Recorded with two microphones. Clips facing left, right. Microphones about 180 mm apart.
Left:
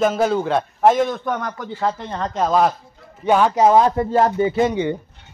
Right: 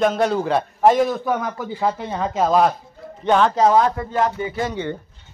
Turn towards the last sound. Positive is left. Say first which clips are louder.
# left 6 dB
turn(degrees=20)  # may be behind; listen again after turning